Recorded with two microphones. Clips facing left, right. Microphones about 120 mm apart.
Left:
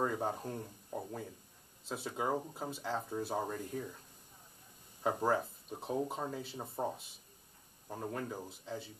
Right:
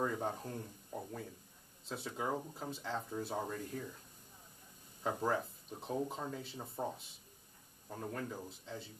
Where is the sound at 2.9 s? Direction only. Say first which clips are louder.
Left 3 dB; 25° left (ahead or behind).